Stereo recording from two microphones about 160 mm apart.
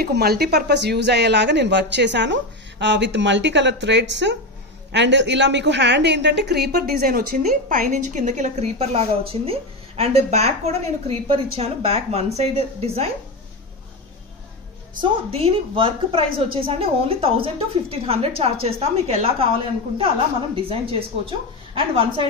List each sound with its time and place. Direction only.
0.0 s a woman's voice: 80° right; by 13.0 s 40° right (ahead or behind)
15.0 s a woman's voice: 35° right (ahead or behind)